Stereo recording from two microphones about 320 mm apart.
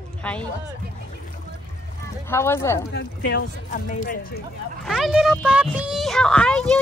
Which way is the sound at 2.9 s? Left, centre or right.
Left.